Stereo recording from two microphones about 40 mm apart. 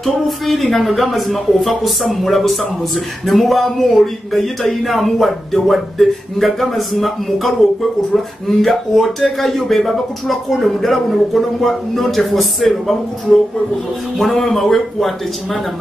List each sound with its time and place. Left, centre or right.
0.0 s speech: centre